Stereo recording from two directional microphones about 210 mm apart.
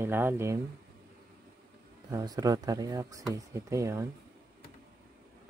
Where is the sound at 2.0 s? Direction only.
15° right (ahead or behind).